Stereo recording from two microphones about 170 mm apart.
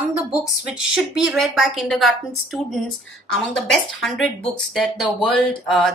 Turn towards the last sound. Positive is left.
turn(degrees=0)  # may be behind; listen again after turning